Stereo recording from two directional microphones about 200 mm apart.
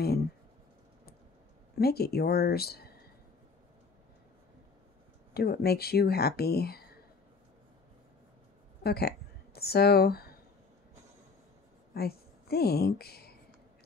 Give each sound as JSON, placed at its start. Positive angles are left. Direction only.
{"t": 1.8, "sound": "speech", "side_deg": 50}
{"t": 5.3, "sound": "speech", "side_deg": 50}
{"t": 8.8, "sound": "a woman's voice", "side_deg": 50}
{"t": 11.9, "sound": "a woman's voice", "side_deg": 50}